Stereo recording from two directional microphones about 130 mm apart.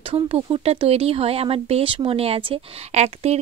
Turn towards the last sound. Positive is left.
turn(degrees=-55)  # may be behind; listen again after turning